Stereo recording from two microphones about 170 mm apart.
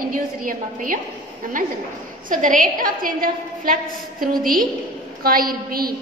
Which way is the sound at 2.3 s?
50° right (ahead or behind).